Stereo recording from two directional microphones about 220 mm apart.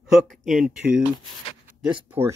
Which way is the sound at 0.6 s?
5° right (ahead or behind).